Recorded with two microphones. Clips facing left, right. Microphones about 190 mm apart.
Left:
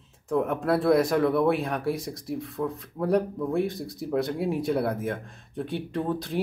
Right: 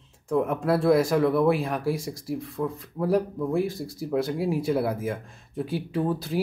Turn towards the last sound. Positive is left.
turn(degrees=-5)  # may be behind; listen again after turning